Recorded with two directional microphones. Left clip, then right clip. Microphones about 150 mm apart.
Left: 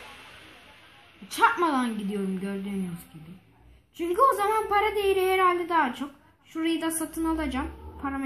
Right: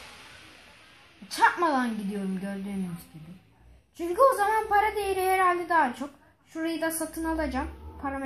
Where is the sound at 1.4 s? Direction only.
30° right (ahead or behind).